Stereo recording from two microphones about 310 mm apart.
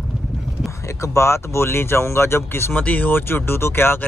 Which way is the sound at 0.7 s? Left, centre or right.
Centre.